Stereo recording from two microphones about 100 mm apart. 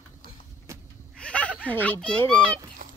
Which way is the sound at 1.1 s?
10° left (ahead or behind).